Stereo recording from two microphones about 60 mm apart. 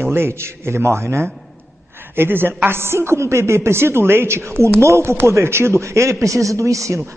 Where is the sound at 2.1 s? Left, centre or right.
Right.